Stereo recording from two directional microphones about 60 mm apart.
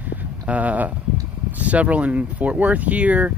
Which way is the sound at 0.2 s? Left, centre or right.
Right.